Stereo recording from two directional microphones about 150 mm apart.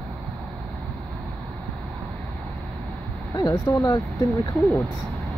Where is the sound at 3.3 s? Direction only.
25° left (ahead or behind).